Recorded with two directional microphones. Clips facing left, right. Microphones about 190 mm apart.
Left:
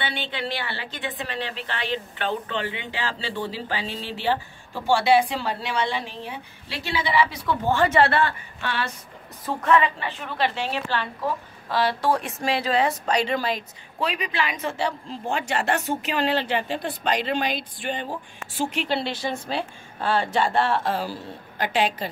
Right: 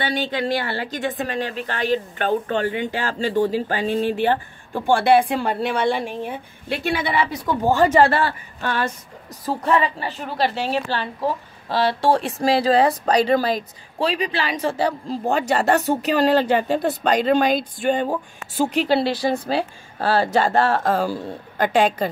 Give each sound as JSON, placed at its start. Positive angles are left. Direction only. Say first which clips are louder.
{"t": 0.0, "sound": "a woman's voice", "louder": "right 7 dB", "side_deg": -40}
{"t": 9.5, "sound": "a woman's voice", "louder": "right 1 dB", "side_deg": -35}